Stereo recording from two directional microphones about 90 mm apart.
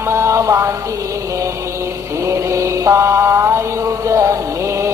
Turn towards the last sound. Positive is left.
turn(degrees=-30)  # may be behind; listen again after turning